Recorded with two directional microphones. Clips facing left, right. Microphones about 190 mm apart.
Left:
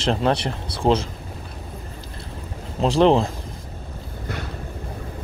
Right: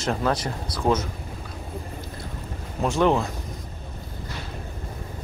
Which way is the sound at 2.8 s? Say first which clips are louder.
Left 5 dB; 30° left (ahead or behind).